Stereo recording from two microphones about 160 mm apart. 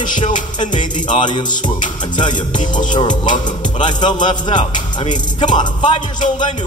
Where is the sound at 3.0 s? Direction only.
30° left (ahead or behind).